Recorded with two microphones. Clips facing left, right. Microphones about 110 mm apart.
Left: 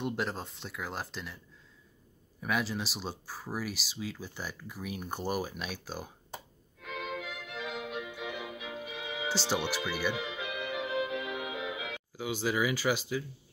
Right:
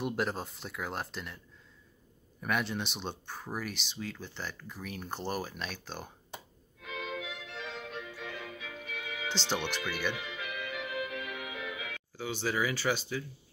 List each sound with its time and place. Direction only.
0.0 s speech: centre (ahead or behind)
2.4 s speech: centre (ahead or behind)
6.8 s violin: centre (ahead or behind)
8.1 s music: 15° left (ahead or behind)